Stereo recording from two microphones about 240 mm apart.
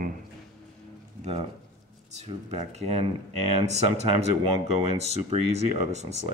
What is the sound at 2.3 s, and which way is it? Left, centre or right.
Speech, right.